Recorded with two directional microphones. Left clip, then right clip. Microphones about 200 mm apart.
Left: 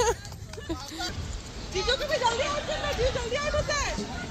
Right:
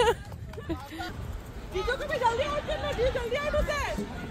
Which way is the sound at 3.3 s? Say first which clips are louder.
Left 1 dB; 60° right (ahead or behind).